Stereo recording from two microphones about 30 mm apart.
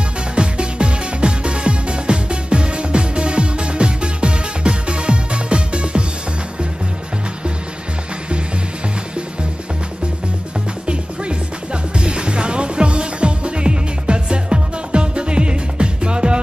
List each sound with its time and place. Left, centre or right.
0.4 s music: right
10.9 s music: right